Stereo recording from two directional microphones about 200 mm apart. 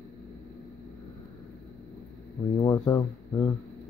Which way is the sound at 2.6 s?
15° left (ahead or behind).